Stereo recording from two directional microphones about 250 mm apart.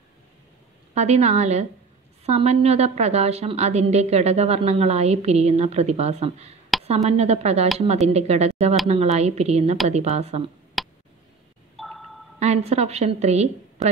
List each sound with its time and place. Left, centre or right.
0.9 s a woman's voice: right
10.8 s a sound: centre
12.4 s a woman's voice: right